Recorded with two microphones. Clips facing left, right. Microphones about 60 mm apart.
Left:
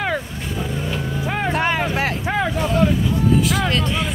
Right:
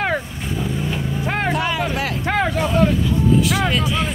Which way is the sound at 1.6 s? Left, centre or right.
Left.